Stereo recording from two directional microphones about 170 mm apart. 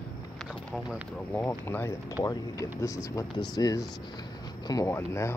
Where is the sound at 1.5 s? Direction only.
15° left (ahead or behind).